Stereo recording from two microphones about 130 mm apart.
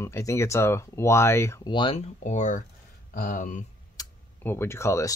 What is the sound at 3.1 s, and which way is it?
Speech, 85° left.